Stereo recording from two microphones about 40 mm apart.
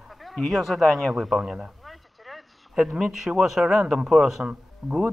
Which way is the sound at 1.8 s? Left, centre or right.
Centre.